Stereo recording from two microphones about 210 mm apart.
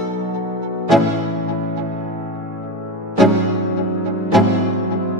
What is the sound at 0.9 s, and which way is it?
Music, centre (ahead or behind).